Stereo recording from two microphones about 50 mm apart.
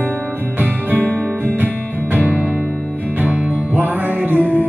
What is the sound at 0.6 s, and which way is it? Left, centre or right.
Music, right.